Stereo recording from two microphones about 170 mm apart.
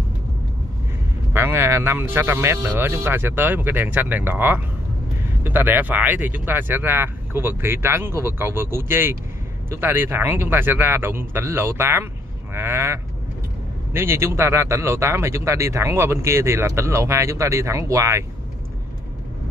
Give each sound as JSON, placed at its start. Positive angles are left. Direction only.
{"t": 1.3, "sound": "speech", "side_deg": -15}